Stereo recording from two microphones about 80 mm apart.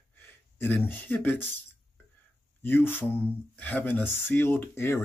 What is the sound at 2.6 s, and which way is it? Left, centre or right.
Speech, left.